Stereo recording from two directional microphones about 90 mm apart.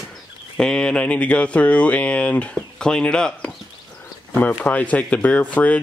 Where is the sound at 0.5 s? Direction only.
10° left (ahead or behind).